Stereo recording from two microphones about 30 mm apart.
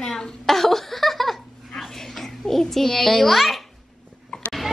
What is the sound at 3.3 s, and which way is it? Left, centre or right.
Speech, centre.